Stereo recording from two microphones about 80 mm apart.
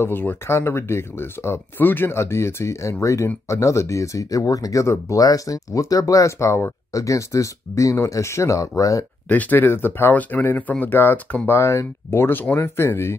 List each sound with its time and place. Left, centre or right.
0.0 s speech: left
9.3 s speech: left